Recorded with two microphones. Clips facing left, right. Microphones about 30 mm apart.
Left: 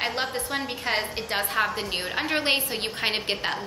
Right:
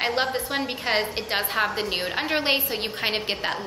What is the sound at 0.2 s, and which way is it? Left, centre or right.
A woman's voice, centre.